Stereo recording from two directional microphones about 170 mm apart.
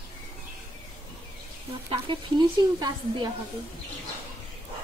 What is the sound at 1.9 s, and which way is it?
A woman's voice, 30° right (ahead or behind).